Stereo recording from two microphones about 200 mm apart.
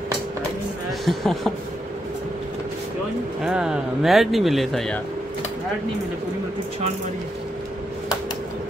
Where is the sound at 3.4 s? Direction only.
5° right (ahead or behind).